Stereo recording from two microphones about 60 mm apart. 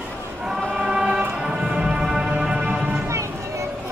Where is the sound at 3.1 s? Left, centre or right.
Right.